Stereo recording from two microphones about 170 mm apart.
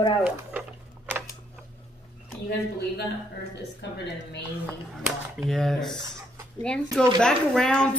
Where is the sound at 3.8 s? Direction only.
90° left.